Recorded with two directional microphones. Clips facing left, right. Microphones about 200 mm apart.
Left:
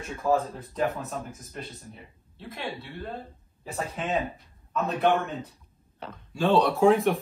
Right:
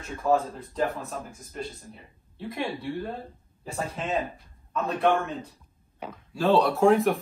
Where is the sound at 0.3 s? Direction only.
Centre (ahead or behind).